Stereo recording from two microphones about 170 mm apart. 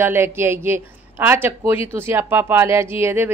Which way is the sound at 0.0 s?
15° right (ahead or behind).